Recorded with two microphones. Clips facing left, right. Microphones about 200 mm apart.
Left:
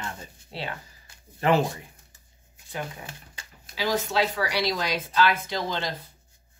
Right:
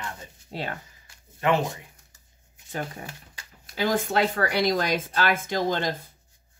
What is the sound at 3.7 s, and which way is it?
Speech, 50° right (ahead or behind).